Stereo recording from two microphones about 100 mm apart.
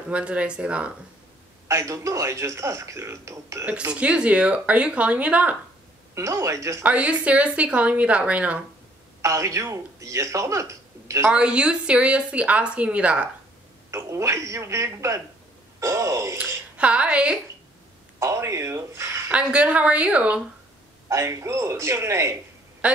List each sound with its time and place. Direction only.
0.1 s a woman's voice: 10° right (ahead or behind)
1.7 s a man's voice: 30° right (ahead or behind)
3.9 s a woman's voice: 10° right (ahead or behind)
6.1 s a man's voice: 30° right (ahead or behind)
6.8 s a woman's voice: 15° right (ahead or behind)
9.2 s a man's voice: 30° right (ahead or behind)
11.2 s a woman's voice: 10° right (ahead or behind)
13.8 s a man's voice: 30° right (ahead or behind)
16.7 s a woman's voice: 10° right (ahead or behind)
18.2 s a man's voice: 30° right (ahead or behind)
19.3 s a woman's voice: 10° right (ahead or behind)
21.1 s a man's voice: 30° right (ahead or behind)